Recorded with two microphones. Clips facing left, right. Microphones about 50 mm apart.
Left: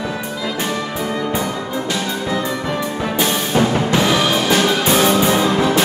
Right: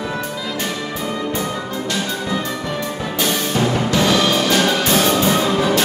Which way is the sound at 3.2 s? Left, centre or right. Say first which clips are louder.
Left 2 dB; left.